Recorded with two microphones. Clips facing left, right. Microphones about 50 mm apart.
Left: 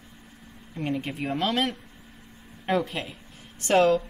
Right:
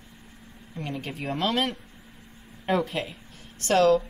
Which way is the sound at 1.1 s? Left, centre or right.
Centre.